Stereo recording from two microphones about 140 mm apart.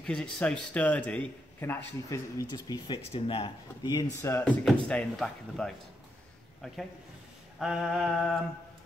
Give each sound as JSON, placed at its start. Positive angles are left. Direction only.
{"t": 0.0, "sound": "a man's voice", "side_deg": 5}
{"t": 3.1, "sound": "speech", "side_deg": 40}
{"t": 4.5, "sound": "speech", "side_deg": 5}
{"t": 7.5, "sound": "speech", "side_deg": 0}